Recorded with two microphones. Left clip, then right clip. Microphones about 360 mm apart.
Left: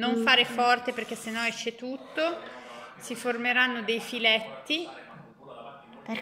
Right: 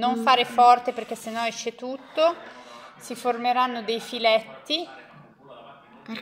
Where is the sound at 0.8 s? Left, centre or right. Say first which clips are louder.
Right 3 dB; right.